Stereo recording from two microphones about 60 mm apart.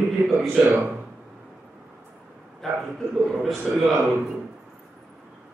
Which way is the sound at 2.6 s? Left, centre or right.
Centre.